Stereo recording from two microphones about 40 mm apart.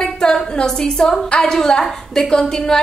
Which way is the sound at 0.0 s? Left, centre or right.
Centre.